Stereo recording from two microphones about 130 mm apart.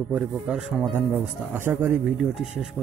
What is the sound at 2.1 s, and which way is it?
Speech, 5° right (ahead or behind).